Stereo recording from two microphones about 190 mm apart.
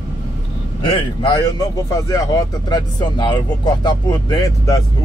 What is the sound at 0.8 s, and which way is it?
A man's voice, 25° left (ahead or behind).